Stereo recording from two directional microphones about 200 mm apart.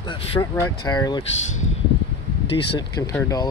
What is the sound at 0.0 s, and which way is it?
Speech, 25° left (ahead or behind).